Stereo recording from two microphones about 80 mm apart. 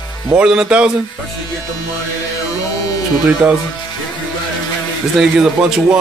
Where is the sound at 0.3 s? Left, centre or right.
Centre.